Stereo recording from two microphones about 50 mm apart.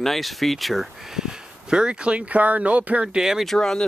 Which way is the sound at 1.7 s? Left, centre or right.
Centre.